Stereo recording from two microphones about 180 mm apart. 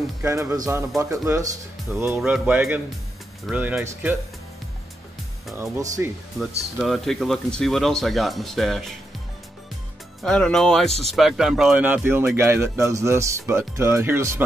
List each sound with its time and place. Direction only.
0.2 s speech: 15° right (ahead or behind)
5.5 s speech: 15° right (ahead or behind)
6.4 s speech: centre (ahead or behind)
10.2 s speech: 5° left (ahead or behind); by 14.4 s 15° right (ahead or behind)